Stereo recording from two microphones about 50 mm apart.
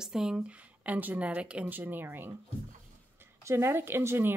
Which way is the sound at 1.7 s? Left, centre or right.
Right.